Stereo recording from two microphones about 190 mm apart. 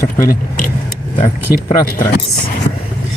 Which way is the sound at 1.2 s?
25° left (ahead or behind).